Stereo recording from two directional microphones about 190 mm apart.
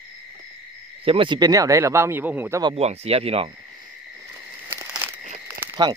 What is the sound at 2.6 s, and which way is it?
Speech, 30° right (ahead or behind).